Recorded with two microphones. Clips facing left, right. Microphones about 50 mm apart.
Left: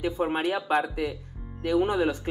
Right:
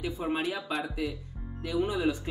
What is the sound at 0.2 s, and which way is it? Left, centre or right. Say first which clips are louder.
Speech: left 4 dB; left.